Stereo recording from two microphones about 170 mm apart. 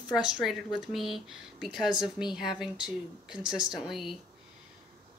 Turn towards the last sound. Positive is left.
turn(degrees=0)  # may be behind; listen again after turning